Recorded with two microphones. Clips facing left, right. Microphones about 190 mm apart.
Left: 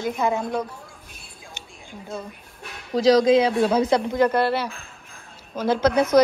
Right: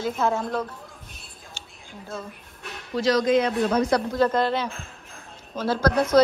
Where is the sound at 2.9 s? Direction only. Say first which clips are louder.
Left 6 dB; 35° left (ahead or behind).